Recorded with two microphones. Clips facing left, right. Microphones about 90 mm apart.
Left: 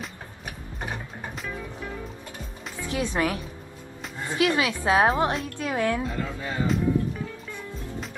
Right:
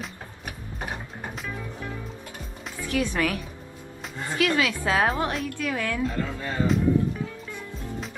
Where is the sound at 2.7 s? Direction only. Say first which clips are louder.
Right 1 dB; 20° left (ahead or behind).